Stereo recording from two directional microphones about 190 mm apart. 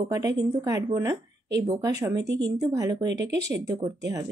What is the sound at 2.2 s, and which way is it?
Speech, 60° right (ahead or behind).